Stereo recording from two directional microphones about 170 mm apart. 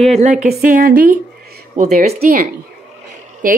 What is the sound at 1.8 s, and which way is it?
Speech, 45° right (ahead or behind).